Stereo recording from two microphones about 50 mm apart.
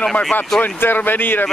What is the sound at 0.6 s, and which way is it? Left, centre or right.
Speech, left.